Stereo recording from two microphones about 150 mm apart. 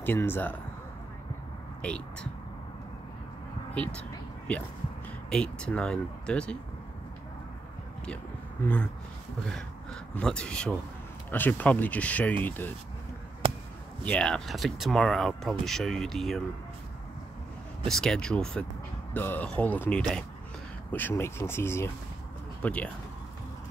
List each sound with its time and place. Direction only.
0.0 s speech: 15° left (ahead or behind)
1.8 s speech: 5° left (ahead or behind)
3.7 s speech: 10° left (ahead or behind)
5.3 s speech: 5° left (ahead or behind)
8.6 s speech: 15° left (ahead or behind)
10.1 s speech: 5° left (ahead or behind)
13.4 s a sound: 35° right (ahead or behind)
14.0 s speech: 5° left (ahead or behind)
17.8 s speech: 5° left (ahead or behind)